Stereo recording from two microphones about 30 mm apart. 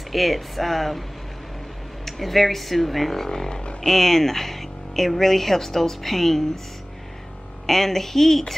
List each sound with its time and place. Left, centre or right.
0.1 s speech: centre
2.0 s speech: centre
3.3 s speech: left
7.6 s speech: centre